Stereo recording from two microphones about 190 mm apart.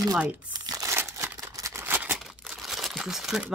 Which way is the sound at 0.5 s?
20° right (ahead or behind).